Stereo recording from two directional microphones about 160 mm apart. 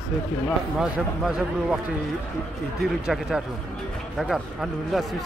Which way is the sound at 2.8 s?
Centre (ahead or behind).